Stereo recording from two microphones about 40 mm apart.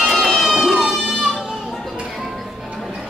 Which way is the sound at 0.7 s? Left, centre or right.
Centre.